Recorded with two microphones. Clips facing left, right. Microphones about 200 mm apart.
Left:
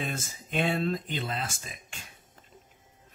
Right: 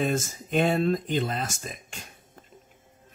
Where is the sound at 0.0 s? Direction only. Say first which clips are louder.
Right 9 dB; 45° right (ahead or behind).